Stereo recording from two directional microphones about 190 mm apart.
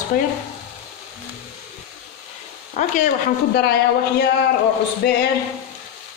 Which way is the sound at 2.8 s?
40° left (ahead or behind).